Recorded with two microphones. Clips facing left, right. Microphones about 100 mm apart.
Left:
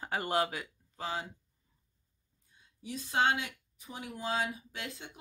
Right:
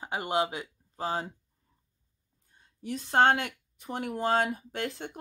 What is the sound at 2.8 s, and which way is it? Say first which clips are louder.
Speech: right 7 dB; 55° right (ahead or behind).